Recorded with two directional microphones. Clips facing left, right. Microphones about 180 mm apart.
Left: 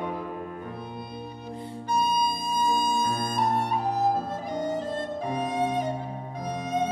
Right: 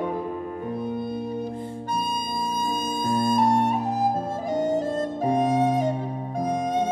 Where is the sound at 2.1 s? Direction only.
50° right (ahead or behind).